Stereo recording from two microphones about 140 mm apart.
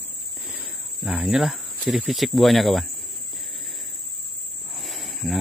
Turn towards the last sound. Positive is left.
turn(degrees=0)  # may be behind; listen again after turning